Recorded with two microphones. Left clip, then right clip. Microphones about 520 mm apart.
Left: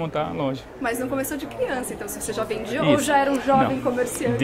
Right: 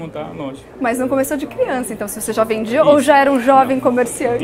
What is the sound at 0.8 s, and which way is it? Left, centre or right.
A woman's voice, right.